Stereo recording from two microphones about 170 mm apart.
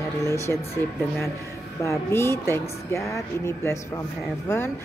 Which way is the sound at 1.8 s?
15° left (ahead or behind).